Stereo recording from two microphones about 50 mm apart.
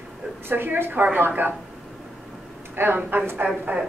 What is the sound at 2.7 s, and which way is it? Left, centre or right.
Speech, right.